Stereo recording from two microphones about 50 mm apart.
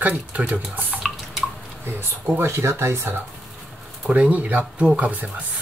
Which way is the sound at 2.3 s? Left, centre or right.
Right.